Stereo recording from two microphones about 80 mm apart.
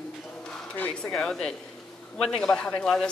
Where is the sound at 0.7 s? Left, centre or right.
Centre.